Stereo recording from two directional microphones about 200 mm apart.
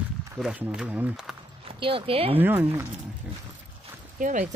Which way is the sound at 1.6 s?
25° right (ahead or behind).